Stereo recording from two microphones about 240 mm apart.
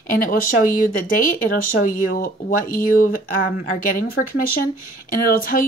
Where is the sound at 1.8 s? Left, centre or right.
Left.